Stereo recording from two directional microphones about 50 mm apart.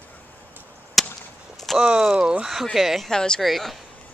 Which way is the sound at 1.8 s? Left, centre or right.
Centre.